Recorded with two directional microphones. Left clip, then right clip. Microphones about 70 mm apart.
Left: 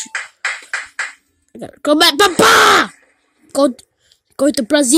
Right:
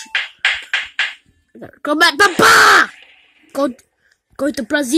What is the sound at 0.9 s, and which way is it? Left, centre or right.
Music, left.